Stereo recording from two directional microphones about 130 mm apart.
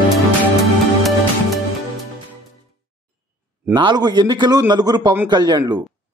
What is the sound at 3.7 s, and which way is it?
A man's voice, 35° right (ahead or behind).